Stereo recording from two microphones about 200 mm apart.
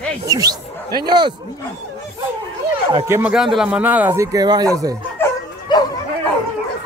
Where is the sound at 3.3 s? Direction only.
Centre (ahead or behind); by 4.9 s 15° right (ahead or behind).